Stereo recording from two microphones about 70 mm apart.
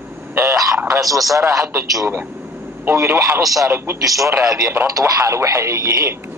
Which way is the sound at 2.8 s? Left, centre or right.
Right.